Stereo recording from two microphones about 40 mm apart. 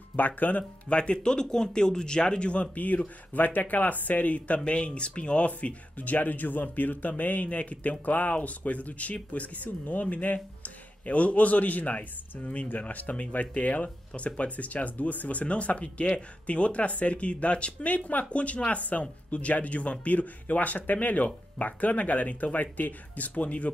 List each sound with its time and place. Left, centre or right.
0.1 s speech: left
4.6 s speech: left